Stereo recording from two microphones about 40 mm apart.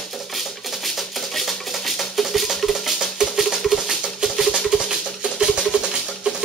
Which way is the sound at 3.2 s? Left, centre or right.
Centre.